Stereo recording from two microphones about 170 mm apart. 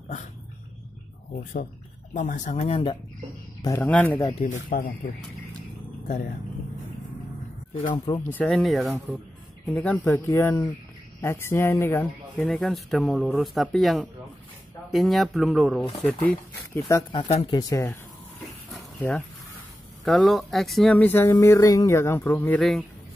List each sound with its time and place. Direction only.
2.1 s speech: 50° left (ahead or behind)
3.6 s speech: 15° left (ahead or behind)
4.4 s speech: 50° left (ahead or behind)
7.7 s speech: 50° left (ahead or behind)
8.2 s speech: 10° left (ahead or behind)
12.4 s speech: centre (ahead or behind)
16.9 s speech: 25° left (ahead or behind)
18.7 s dog: 10° left (ahead or behind)
20.1 s speech: centre (ahead or behind)
22.6 s speech: centre (ahead or behind)